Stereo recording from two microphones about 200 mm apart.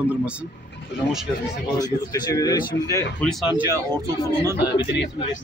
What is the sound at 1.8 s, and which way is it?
Speech, 20° left (ahead or behind).